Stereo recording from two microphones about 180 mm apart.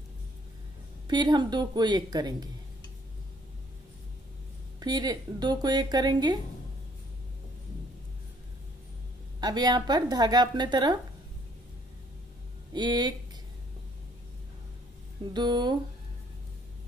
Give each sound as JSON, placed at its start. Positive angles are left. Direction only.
{"t": 1.0, "sound": "speech", "side_deg": -25}
{"t": 4.7, "sound": "speech", "side_deg": -20}
{"t": 9.4, "sound": "speech", "side_deg": -20}
{"t": 12.7, "sound": "speech", "side_deg": -25}
{"t": 15.3, "sound": "speech", "side_deg": -25}